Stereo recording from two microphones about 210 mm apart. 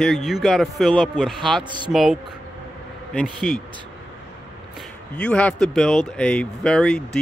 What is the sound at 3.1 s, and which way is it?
Speech, centre (ahead or behind).